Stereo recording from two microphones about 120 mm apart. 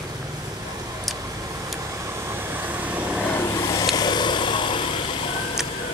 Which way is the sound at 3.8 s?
35° left (ahead or behind).